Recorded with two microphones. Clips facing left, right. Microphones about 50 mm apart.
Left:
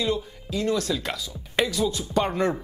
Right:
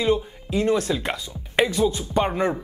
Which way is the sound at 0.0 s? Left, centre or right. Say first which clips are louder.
Right 5 dB; right.